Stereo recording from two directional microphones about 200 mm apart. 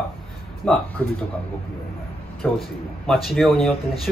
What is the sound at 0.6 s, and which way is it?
Speech, 5° left (ahead or behind).